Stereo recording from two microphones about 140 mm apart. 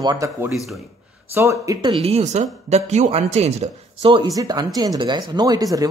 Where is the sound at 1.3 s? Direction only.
20° right (ahead or behind).